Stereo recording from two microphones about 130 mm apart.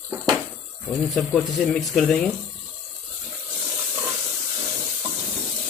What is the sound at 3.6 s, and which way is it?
Hiss, 20° right (ahead or behind).